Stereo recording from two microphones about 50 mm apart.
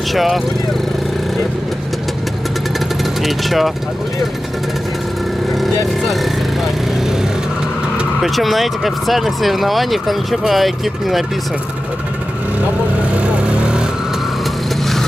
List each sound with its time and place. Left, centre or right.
0.1 s speech: centre
3.2 s speech: centre
8.2 s speech: centre
13.2 s vehicle: right